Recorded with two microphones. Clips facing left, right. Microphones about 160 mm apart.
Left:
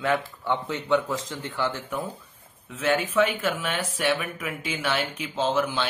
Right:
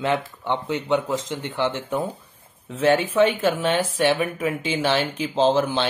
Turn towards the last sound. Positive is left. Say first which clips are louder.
# right 6 dB
turn(degrees=-30)  # may be behind; listen again after turning